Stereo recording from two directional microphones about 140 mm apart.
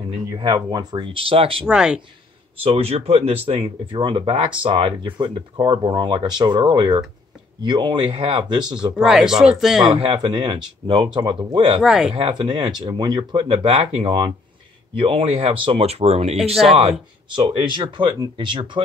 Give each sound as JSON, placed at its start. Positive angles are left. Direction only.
{"t": 0.4, "sound": "speech", "side_deg": -30}
{"t": 1.7, "sound": "speech", "side_deg": -5}
{"t": 2.6, "sound": "speech", "side_deg": -45}
{"t": 8.7, "sound": "speech", "side_deg": -5}
{"t": 9.9, "sound": "speech", "side_deg": -35}
{"t": 11.8, "sound": "speech", "side_deg": 0}
{"t": 12.1, "sound": "speech", "side_deg": -40}